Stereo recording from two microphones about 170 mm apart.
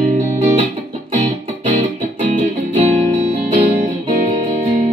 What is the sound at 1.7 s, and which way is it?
Music, 45° right (ahead or behind).